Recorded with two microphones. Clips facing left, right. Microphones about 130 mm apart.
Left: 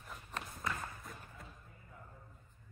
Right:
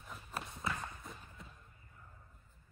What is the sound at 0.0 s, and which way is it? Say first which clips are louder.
Run: right 1 dB; centre (ahead or behind).